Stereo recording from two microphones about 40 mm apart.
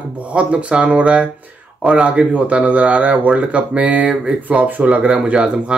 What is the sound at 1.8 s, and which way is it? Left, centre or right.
Speech, right.